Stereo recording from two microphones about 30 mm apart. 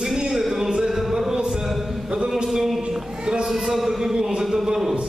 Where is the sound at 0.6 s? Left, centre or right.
Right.